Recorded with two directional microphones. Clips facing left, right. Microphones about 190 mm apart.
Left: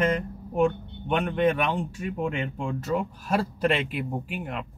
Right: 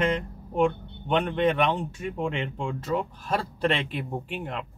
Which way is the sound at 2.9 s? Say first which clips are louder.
Left 1 dB; 10° left (ahead or behind).